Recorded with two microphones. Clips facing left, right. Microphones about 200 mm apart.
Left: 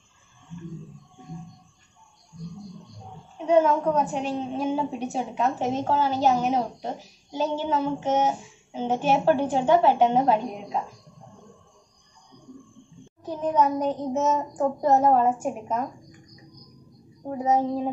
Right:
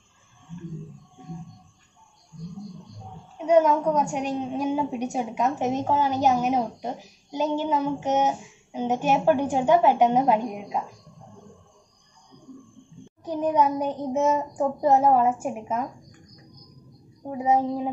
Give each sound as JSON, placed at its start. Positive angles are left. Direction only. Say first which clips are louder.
{"t": 3.4, "sound": "a woman's voice", "louder": "right 1 dB", "side_deg": -15}
{"t": 13.2, "sound": "a woman's voice", "louder": "right 1 dB", "side_deg": -10}
{"t": 17.3, "sound": "a woman's voice", "louder": "even", "side_deg": -10}